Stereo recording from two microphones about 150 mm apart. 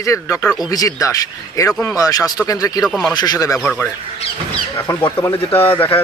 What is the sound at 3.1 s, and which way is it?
Speech, 25° left (ahead or behind).